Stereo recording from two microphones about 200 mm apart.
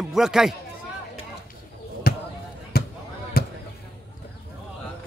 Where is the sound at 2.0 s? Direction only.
50° left (ahead or behind).